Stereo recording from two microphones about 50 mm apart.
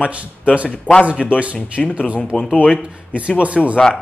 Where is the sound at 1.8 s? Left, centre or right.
Centre.